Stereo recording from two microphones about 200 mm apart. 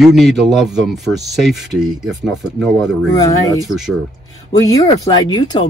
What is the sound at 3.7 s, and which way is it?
Speech, centre (ahead or behind).